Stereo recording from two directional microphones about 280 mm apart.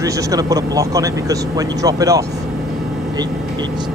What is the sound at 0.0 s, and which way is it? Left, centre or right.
Speech, centre.